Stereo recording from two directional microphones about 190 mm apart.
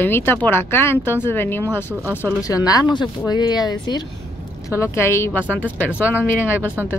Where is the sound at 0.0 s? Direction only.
10° left (ahead or behind).